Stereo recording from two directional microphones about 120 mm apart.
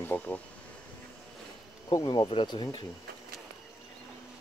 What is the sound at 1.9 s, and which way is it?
Speech, 35° left (ahead or behind).